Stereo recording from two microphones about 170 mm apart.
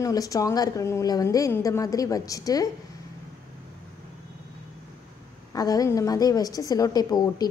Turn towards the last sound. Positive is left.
turn(degrees=25)  # may be behind; listen again after turning